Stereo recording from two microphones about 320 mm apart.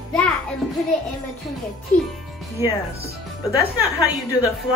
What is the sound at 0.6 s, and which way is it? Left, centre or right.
Music, centre.